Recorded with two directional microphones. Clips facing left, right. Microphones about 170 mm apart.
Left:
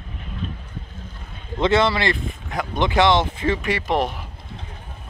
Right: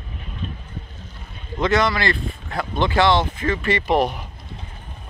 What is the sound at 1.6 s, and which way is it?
Speech, 25° left (ahead or behind).